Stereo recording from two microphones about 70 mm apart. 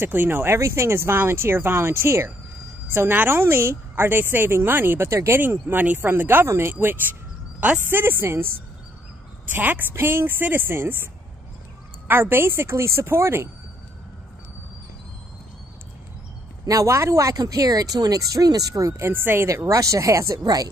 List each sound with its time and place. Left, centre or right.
0.0 s a woman's voice: right
5.4 s a woman's voice: right
9.5 s a woman's voice: right
12.1 s a woman's voice: right
16.6 s speech: right
18.9 s speech: right